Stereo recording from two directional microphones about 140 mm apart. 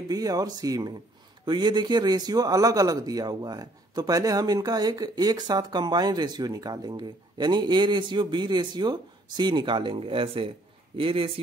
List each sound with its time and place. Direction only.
0.1 s a man's voice: 25° right (ahead or behind)